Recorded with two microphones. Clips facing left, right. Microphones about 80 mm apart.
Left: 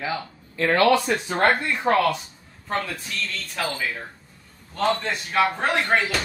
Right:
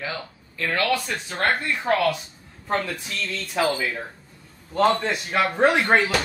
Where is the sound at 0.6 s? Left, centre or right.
Left.